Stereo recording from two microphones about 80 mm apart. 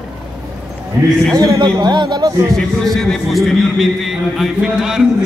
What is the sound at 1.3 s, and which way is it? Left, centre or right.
Speech, right.